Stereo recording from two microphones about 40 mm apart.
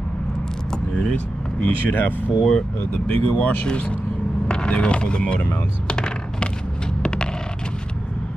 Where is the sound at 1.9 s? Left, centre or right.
Left.